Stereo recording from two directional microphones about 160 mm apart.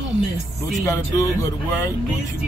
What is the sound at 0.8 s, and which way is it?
Speech, 20° left (ahead or behind).